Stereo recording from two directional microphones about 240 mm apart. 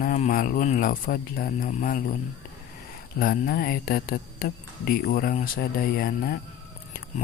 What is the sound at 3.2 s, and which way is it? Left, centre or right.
Speech, left.